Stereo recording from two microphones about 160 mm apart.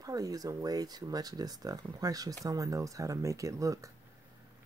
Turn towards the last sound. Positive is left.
turn(degrees=-20)  # may be behind; listen again after turning